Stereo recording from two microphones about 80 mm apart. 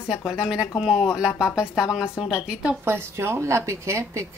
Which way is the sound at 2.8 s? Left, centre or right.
Right.